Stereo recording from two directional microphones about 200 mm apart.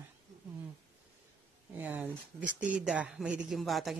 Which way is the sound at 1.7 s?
10° right (ahead or behind).